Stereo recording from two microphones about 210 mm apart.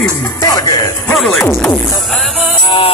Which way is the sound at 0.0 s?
15° left (ahead or behind).